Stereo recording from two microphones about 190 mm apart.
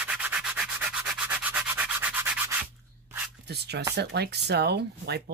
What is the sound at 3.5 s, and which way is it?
Speech, 60° right (ahead or behind).